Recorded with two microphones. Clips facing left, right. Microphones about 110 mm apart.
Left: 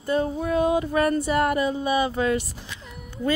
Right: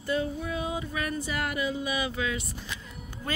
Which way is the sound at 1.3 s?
40° left (ahead or behind).